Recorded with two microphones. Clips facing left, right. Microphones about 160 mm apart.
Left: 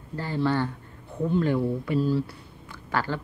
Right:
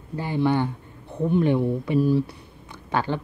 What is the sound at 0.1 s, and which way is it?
A woman's voice, 15° right (ahead or behind).